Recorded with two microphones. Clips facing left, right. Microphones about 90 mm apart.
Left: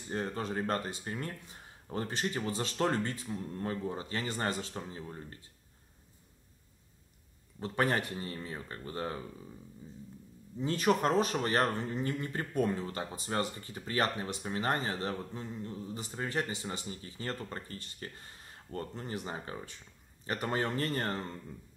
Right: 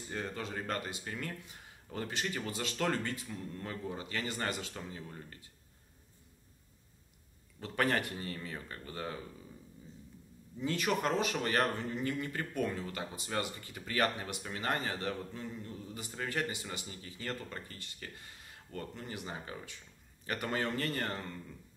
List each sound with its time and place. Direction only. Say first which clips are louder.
0.1 s speech: left 5 dB; 35° left (ahead or behind)
7.6 s speech: left 1 dB; 25° left (ahead or behind)
10.6 s speech: left 4 dB; 35° left (ahead or behind)